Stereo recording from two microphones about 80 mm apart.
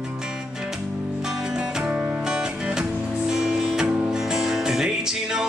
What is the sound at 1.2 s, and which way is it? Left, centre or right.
Music, centre.